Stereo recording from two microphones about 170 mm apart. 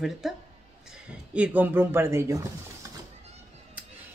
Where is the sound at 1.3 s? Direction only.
10° right (ahead or behind).